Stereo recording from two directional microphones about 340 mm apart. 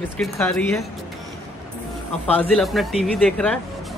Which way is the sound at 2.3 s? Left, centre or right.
Centre.